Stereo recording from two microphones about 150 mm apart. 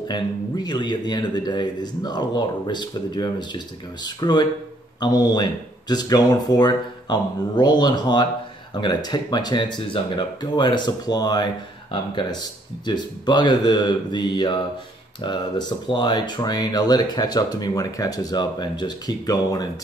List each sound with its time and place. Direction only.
0.1 s speech: 30° left (ahead or behind)